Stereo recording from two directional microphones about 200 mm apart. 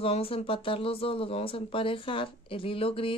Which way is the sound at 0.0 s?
30° left (ahead or behind).